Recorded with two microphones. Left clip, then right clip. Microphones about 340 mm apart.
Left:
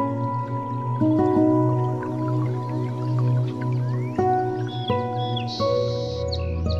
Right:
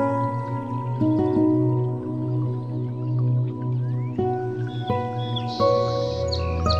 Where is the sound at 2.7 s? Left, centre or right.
Left.